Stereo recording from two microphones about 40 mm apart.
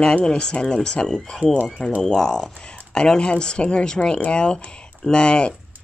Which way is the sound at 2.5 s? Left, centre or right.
Left.